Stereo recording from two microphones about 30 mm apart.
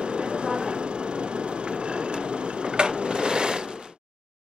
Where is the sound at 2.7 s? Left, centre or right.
Right.